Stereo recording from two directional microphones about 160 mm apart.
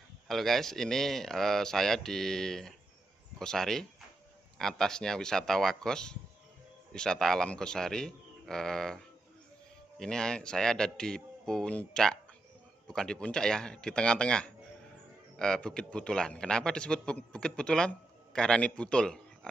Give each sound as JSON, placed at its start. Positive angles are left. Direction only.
{"t": 0.3, "sound": "a man's voice", "side_deg": 0}